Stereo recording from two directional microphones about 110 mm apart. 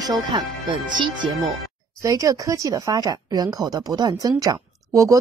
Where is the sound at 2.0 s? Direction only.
30° right (ahead or behind).